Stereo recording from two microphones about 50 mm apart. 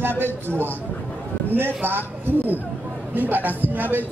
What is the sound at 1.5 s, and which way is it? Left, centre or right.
A man's voice, right.